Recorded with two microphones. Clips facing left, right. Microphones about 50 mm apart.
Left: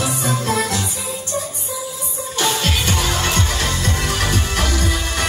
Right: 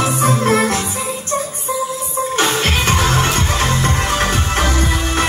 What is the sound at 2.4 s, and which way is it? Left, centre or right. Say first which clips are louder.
Music: right 2 dB; right.